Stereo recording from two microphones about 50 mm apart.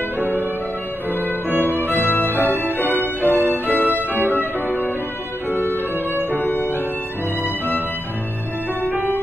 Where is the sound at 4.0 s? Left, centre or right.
Right.